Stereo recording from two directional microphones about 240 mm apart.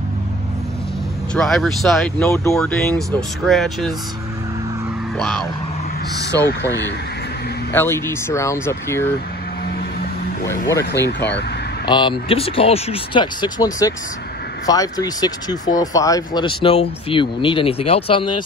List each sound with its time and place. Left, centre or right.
1.3 s speech: centre
2.2 s speech: centre
5.1 s a sound: centre
7.7 s speech: centre
11.1 s speech: left
11.9 s speech: centre